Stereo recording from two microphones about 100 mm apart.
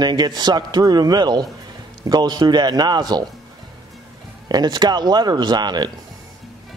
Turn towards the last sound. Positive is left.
turn(degrees=-45)  # may be behind; listen again after turning